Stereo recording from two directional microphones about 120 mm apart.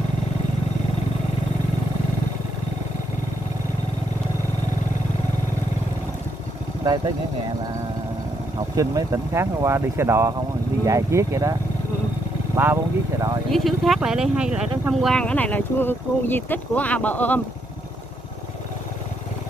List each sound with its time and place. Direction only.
6.8 s speech: 30° right (ahead or behind)
8.5 s speech: 30° right (ahead or behind)
12.5 s speech: 20° right (ahead or behind)
13.5 s speech: centre (ahead or behind)